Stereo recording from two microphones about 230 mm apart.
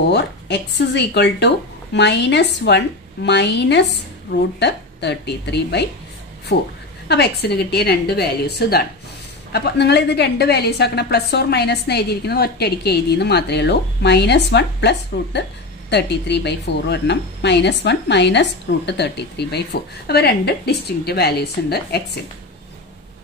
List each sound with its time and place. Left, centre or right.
0.1 s a woman's voice: left